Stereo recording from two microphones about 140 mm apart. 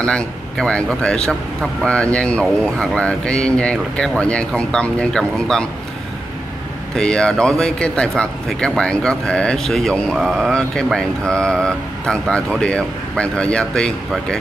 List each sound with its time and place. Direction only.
0.0 s a man's voice: 5° left (ahead or behind)
7.0 s speech: 5° left (ahead or behind)